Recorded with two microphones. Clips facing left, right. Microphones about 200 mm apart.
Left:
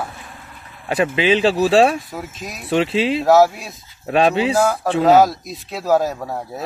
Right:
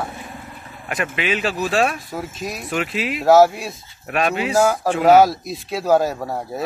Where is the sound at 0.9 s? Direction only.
30° left (ahead or behind).